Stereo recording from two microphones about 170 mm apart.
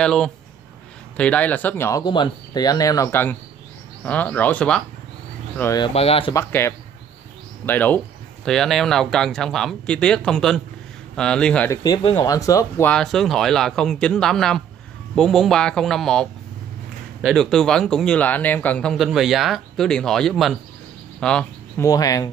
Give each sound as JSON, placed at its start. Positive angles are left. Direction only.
{"t": 0.0, "sound": "speech", "side_deg": 5}
{"t": 5.6, "sound": "speech", "side_deg": 20}
{"t": 5.9, "sound": "speech", "side_deg": 35}
{"t": 6.3, "sound": "speech", "side_deg": 15}
{"t": 11.7, "sound": "speech", "side_deg": 25}
{"t": 12.9, "sound": "speech", "side_deg": 0}
{"t": 21.2, "sound": "a sound", "side_deg": 5}
{"t": 21.8, "sound": "speech", "side_deg": 20}